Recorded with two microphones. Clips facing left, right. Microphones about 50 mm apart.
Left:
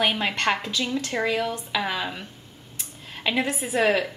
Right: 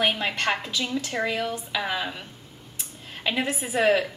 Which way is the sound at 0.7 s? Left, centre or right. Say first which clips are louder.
Left 1 dB; centre.